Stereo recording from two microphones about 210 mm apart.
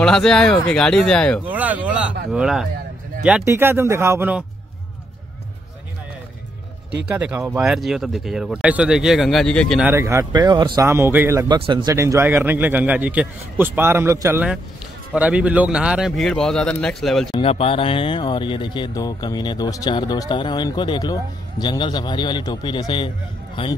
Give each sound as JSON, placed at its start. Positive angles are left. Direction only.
{"t": 0.0, "sound": "speech", "side_deg": 5}
{"t": 1.5, "sound": "speech", "side_deg": -5}
{"t": 7.1, "sound": "speech", "side_deg": -5}
{"t": 9.8, "sound": "speech", "side_deg": -15}
{"t": 17.4, "sound": "speech", "side_deg": 25}